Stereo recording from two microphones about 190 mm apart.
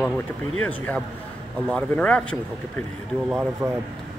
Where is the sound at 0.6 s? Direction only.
5° left (ahead or behind).